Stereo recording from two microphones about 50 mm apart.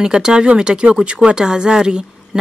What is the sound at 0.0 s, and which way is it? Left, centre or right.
A woman's voice, centre.